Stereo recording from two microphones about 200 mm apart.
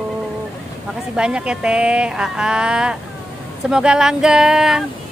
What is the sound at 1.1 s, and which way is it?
Speech, 5° right (ahead or behind).